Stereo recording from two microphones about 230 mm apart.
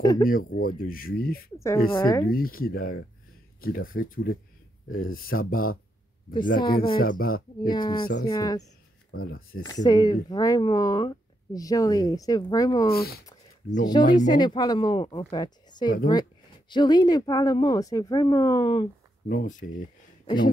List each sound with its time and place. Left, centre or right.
0.0 s speech: centre
0.3 s speech: left
1.9 s speech: centre
2.2 s speech: left
7.0 s speech: left
7.6 s speech: centre
9.1 s speech: left
9.6 s speech: centre
12.9 s speech: left
13.8 s speech: centre
19.2 s speech: left
20.2 s throat clearing: left